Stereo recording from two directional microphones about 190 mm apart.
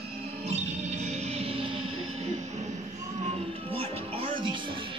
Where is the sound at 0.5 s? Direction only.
35° right (ahead or behind).